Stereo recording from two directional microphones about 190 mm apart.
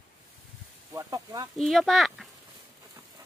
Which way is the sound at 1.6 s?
Centre (ahead or behind).